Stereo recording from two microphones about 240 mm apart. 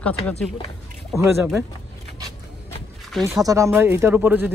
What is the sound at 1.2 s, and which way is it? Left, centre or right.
Speech, centre.